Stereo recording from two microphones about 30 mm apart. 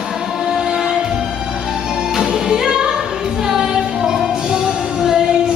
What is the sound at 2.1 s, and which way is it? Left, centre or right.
Music, centre.